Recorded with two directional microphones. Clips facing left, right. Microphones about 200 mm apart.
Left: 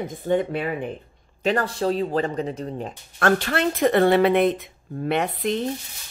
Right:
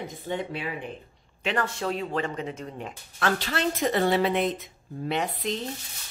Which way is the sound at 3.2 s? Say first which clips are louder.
Left 6 dB; 55° left (ahead or behind).